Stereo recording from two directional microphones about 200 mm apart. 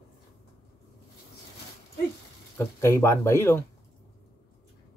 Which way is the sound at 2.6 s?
15° left (ahead or behind).